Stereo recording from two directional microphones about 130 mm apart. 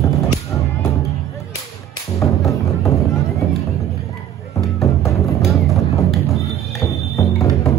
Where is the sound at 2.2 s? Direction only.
25° left (ahead or behind).